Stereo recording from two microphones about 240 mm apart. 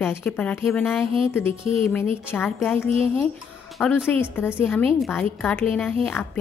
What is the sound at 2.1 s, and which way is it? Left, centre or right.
A woman's voice, centre.